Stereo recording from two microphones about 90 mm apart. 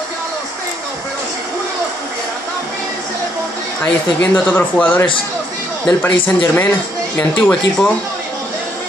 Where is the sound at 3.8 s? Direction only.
20° left (ahead or behind).